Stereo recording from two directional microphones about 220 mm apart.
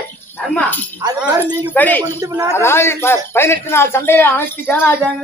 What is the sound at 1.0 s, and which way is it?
Speech, 20° right (ahead or behind).